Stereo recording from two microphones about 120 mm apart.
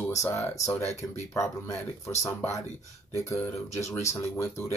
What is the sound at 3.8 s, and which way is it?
Speech, 25° left (ahead or behind).